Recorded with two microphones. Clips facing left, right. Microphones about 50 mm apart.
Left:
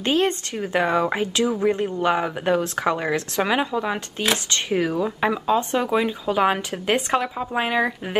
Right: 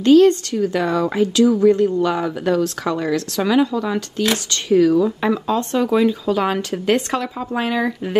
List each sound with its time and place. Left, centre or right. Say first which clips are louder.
0.0 s speech: right 10 dB; left